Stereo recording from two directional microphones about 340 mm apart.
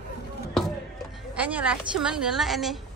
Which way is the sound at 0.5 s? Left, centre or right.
Centre.